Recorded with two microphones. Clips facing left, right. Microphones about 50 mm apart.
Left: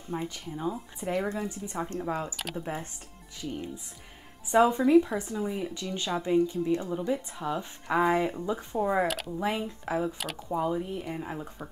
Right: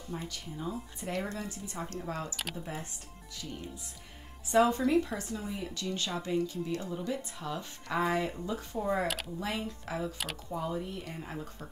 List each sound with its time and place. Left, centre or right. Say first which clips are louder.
0.1 s speech: left 6 dB; left
4.5 s speech: left 4 dB; centre
5.4 s speech: left 7 dB; centre
5.8 s speech: left 3 dB; left
9.0 s speech: left 4 dB; centre
9.4 s speech: left 5 dB; left